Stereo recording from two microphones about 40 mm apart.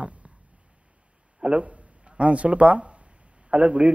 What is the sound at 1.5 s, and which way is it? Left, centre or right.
A man's voice, right.